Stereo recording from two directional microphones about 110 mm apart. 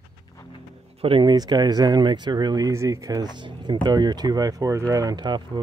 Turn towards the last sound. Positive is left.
turn(degrees=-40)  # may be behind; listen again after turning